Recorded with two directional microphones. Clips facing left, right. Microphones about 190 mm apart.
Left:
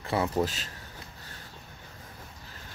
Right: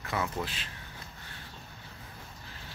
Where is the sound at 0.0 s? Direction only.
30° left (ahead or behind).